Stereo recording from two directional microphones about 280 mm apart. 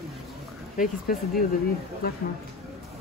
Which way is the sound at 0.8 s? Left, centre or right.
Left.